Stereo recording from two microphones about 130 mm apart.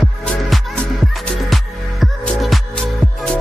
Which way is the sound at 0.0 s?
5° left (ahead or behind).